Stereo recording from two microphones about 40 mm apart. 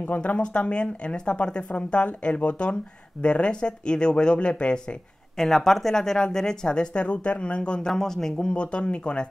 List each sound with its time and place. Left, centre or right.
0.0 s speech: left
0.4 s speech: left
5.4 s speech: centre; by 7.8 s left
7.8 s speech: centre